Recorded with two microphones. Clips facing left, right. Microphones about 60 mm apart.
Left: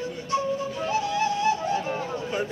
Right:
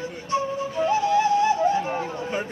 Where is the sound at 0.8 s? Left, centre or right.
Right.